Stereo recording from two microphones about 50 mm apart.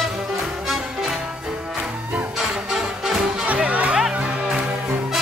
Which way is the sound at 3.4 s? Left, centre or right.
Right.